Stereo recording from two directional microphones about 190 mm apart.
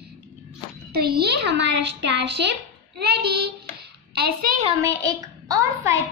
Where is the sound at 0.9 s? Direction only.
55° right (ahead or behind).